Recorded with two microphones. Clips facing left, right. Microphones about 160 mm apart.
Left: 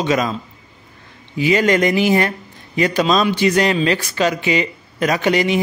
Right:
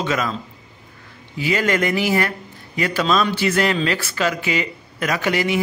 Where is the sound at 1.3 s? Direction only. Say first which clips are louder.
Left 5 dB; 20° left (ahead or behind).